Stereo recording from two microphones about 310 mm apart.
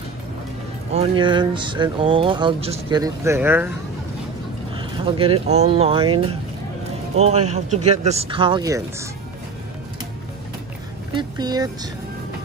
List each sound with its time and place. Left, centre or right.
0.9 s speech: centre
4.7 s speech: centre
7.4 s speech: right
11.1 s speech: centre